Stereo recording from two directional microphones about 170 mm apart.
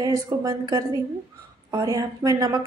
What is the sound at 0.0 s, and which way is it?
A woman's voice, 20° right (ahead or behind).